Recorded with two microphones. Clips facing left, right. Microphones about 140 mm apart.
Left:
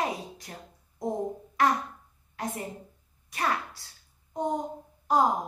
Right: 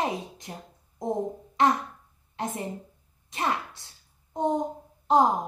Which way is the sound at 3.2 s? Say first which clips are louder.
Right 1 dB; 25° right (ahead or behind).